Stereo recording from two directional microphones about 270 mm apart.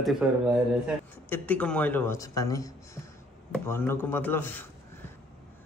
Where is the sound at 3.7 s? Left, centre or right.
Centre.